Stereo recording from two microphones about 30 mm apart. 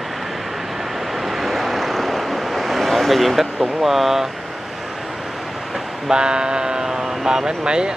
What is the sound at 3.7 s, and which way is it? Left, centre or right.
Speech, centre.